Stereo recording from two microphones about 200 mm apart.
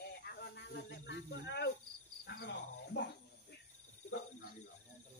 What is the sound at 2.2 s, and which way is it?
Speech, 60° left (ahead or behind).